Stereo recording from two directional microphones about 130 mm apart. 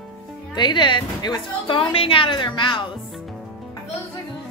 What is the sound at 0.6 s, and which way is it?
A woman's voice, 35° left (ahead or behind).